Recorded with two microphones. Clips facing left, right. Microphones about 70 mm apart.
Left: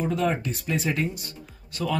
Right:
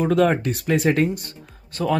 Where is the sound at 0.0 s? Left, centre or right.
Right.